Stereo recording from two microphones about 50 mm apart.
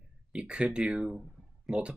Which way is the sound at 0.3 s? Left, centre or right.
Right.